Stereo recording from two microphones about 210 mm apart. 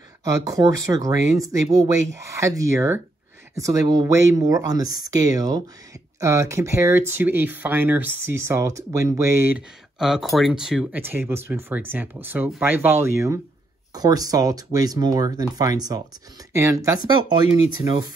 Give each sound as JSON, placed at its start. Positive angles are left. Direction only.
{"t": 0.2, "sound": "speech", "side_deg": -15}